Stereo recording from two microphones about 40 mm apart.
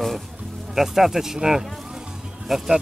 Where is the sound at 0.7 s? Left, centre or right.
Centre.